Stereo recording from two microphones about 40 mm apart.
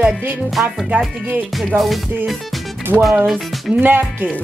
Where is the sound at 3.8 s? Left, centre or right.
Right.